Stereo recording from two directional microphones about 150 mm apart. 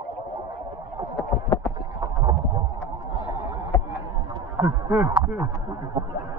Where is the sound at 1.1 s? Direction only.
15° left (ahead or behind).